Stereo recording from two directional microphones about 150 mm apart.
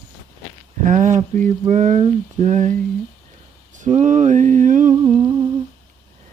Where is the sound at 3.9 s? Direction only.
50° right (ahead or behind).